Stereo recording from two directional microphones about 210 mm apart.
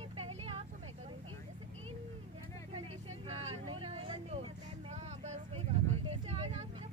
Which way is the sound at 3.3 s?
30° right (ahead or behind).